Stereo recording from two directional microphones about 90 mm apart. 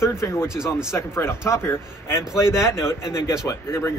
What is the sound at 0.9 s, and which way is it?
A man's voice, 30° left (ahead or behind).